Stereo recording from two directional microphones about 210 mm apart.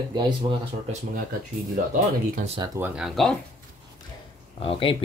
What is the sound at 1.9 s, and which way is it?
Speech, 35° right (ahead or behind).